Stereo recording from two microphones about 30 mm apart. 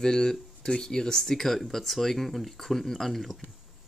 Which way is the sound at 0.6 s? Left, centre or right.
Left.